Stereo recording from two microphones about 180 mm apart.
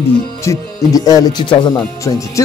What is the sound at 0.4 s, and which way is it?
Speech, 20° left (ahead or behind).